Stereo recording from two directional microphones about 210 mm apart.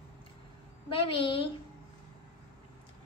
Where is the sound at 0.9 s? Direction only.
25° left (ahead or behind).